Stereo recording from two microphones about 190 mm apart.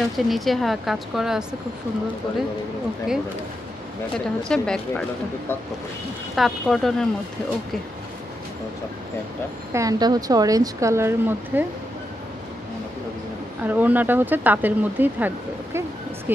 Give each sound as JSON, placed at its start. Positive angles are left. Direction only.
{"t": 0.0, "sound": "speech", "side_deg": 0}
{"t": 4.5, "sound": "speech", "side_deg": 5}
{"t": 6.3, "sound": "speech", "side_deg": 0}
{"t": 9.7, "sound": "speech", "side_deg": -15}
{"t": 13.7, "sound": "speech", "side_deg": -10}